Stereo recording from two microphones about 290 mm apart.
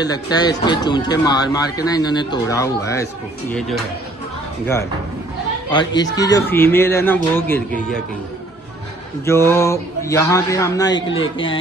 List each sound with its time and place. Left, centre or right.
0.0 s speech: centre
5.7 s speech: centre
9.2 s speech: centre